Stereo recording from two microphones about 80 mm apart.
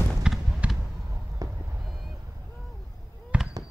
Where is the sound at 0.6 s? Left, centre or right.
Centre.